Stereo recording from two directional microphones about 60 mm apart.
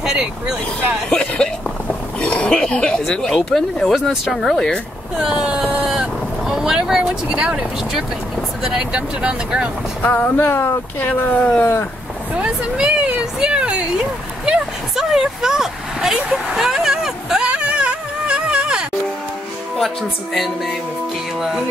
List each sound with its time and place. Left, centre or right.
0.0 s speech: centre
1.1 s speech: centre
5.1 s speech: centre
10.0 s speech: left
10.3 s speech: left
11.0 s speech: left
11.3 s speech: centre
12.4 s speech: centre
15.0 s speech: centre
16.2 s vehicle: centre
17.5 s a sound: centre
19.8 s speech: centre